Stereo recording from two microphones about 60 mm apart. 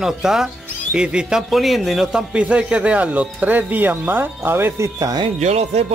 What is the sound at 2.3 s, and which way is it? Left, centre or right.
Speech, centre.